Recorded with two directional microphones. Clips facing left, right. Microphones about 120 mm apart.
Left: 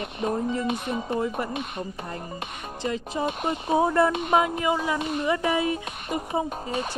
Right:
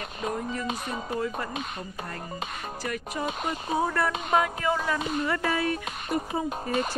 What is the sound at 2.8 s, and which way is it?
Speech, 20° left (ahead or behind).